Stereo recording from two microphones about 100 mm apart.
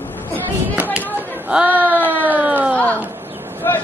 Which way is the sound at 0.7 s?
15° right (ahead or behind).